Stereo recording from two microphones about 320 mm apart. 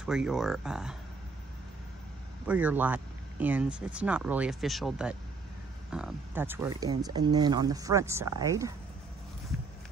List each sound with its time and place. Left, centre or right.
0.0 s speech: centre
2.4 s speech: centre